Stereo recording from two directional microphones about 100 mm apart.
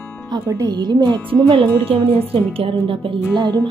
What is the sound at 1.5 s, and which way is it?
Speech, 60° right (ahead or behind).